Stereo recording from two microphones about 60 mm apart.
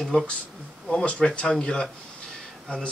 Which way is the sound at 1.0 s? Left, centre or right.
Centre.